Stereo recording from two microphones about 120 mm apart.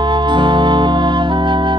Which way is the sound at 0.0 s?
40° right (ahead or behind).